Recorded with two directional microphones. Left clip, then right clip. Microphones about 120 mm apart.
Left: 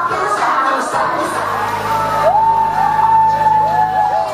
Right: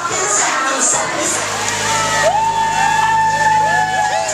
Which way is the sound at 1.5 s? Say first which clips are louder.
Left 1 dB; 25° right (ahead or behind).